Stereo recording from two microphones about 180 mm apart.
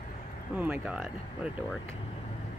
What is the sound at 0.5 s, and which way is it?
Speech, 10° right (ahead or behind).